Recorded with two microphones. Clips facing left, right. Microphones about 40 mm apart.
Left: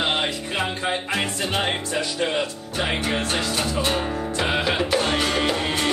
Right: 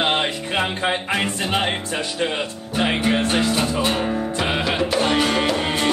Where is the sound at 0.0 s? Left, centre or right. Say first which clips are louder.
Right 3 dB; right.